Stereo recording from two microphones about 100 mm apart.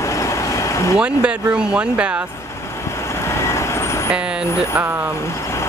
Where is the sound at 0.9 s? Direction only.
10° right (ahead or behind).